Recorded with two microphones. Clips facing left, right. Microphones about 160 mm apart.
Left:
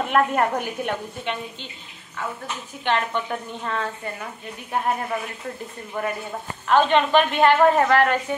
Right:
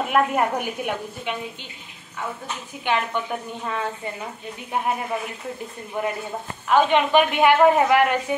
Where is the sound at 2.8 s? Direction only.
10° right (ahead or behind).